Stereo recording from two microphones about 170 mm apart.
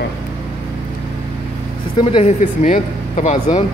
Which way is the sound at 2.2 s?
45° left (ahead or behind).